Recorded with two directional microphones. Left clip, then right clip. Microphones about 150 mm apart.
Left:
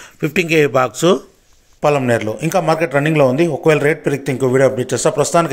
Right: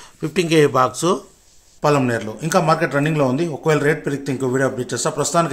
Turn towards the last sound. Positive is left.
turn(degrees=20)  # may be behind; listen again after turning